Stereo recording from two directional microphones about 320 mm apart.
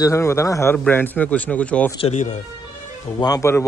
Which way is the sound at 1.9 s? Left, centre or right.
Centre.